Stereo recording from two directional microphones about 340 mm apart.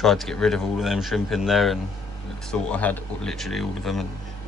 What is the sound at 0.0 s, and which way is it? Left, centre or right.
Speech, centre.